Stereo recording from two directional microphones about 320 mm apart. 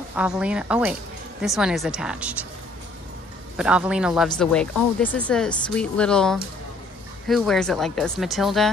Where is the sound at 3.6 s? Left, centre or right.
Centre.